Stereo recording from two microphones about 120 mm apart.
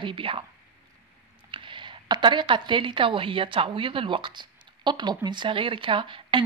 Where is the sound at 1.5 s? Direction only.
45° right (ahead or behind).